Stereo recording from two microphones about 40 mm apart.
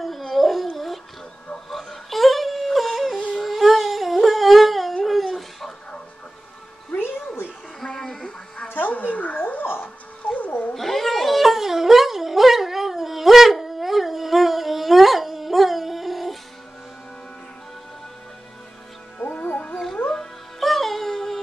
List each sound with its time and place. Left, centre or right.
0.0 s dog: centre
1.7 s wail: centre
3.4 s humming: centre
5.0 s dog: centre
7.8 s a sound: centre
8.6 s dog: left
10.2 s cat: left
10.7 s cat: centre
19.4 s music: left
20.1 s music: centre